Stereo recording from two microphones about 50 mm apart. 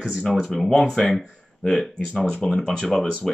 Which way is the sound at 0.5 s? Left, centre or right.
Centre.